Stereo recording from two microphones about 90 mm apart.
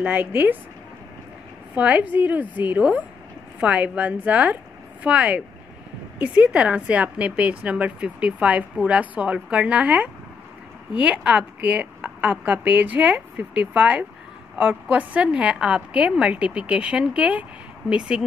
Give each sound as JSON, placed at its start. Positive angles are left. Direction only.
{"t": 0.0, "sound": "speech", "side_deg": -20}
{"t": 1.8, "sound": "a woman's voice", "side_deg": -15}